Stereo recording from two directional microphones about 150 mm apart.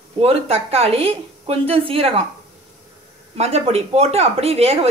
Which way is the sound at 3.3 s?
45° right (ahead or behind).